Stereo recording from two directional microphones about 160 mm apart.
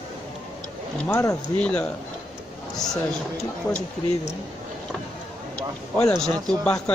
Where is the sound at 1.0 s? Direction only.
10° left (ahead or behind).